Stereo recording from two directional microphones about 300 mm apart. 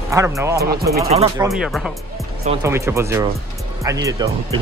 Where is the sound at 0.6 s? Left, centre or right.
Right.